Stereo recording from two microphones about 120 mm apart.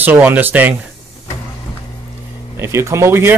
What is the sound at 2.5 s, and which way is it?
Speech, 25° right (ahead or behind).